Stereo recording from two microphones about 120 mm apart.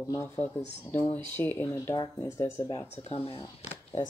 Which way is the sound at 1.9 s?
30° left (ahead or behind).